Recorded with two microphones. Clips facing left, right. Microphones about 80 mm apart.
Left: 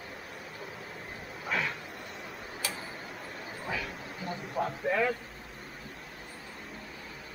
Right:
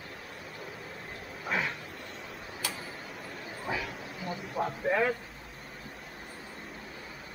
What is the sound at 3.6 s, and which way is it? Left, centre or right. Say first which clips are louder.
Bow-wow: right 2 dB; centre.